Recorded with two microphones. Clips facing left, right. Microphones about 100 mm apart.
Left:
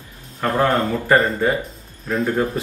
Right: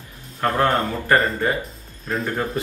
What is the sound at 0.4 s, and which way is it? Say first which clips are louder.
Speech: left 1 dB; 5° left (ahead or behind).